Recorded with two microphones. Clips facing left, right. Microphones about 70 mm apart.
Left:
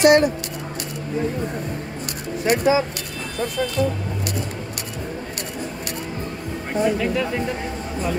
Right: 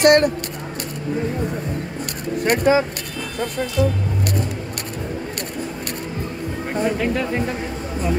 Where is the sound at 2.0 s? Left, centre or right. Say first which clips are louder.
Right 2 dB; right.